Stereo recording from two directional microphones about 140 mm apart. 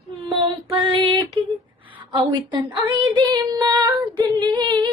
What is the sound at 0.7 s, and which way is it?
Child singing, 35° right (ahead or behind).